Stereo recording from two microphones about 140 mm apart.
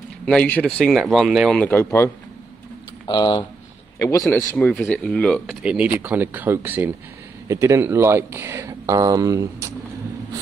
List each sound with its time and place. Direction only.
0.2 s speech: 5° left (ahead or behind)
1.6 s speech: 15° left (ahead or behind)
3.1 s speech: 35° left (ahead or behind)
4.6 s speech: 10° left (ahead or behind)
5.6 s speech: 10° right (ahead or behind)